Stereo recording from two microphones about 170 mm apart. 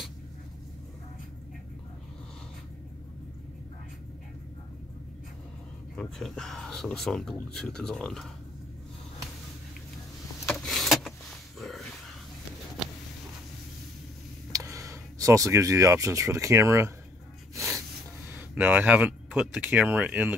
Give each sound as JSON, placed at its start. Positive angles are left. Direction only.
{"t": 5.9, "sound": "speech", "side_deg": 0}
{"t": 10.4, "sound": "power windows", "side_deg": 5}
{"t": 14.5, "sound": "speech", "side_deg": -20}
{"t": 18.3, "sound": "speech", "side_deg": -10}